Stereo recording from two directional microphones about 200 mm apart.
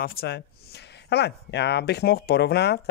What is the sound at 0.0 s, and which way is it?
Speech, 50° left (ahead or behind).